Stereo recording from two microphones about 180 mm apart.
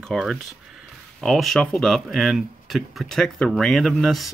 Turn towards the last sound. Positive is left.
turn(degrees=0)  # may be behind; listen again after turning